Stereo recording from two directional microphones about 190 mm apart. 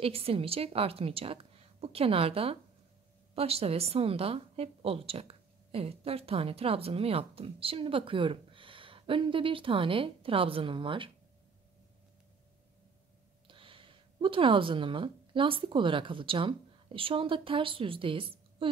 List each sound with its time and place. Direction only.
0.0 s a woman's voice: 30° right (ahead or behind)
13.5 s speech: 25° right (ahead or behind)